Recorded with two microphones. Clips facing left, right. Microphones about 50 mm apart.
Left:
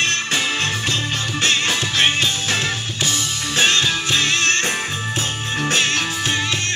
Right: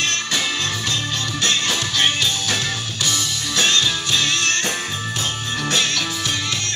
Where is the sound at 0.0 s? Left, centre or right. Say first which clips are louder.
Left 2 dB; left.